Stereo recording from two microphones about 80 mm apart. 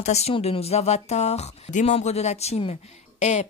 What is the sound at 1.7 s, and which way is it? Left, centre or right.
Speech, left.